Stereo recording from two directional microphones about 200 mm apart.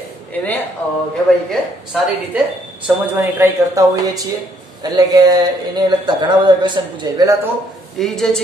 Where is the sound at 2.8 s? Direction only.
10° right (ahead or behind).